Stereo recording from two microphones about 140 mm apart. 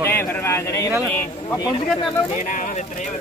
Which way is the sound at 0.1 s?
20° left (ahead or behind).